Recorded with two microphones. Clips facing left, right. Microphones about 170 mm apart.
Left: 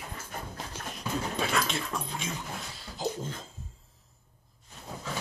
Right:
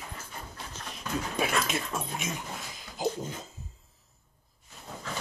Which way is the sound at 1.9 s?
20° right (ahead or behind).